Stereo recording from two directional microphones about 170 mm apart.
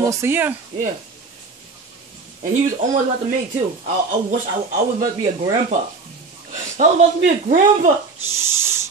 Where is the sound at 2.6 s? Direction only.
50° right (ahead or behind).